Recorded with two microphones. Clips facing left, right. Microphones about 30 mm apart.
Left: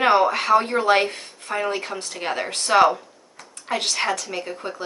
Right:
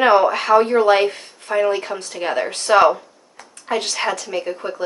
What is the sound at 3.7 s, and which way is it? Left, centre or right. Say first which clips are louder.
Speech: right 4 dB; centre.